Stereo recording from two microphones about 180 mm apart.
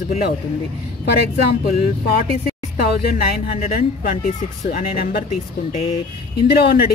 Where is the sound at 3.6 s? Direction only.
40° left (ahead or behind).